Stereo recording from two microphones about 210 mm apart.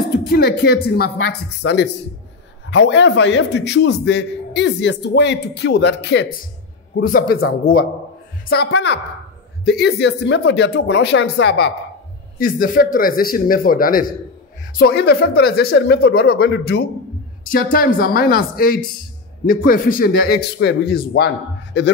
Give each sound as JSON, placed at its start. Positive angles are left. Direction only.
{"t": 0.1, "sound": "a man's voice", "side_deg": 50}
{"t": 7.0, "sound": "speech", "side_deg": 45}
{"t": 8.6, "sound": "a man's voice", "side_deg": 55}
{"t": 12.4, "sound": "a man's voice", "side_deg": 40}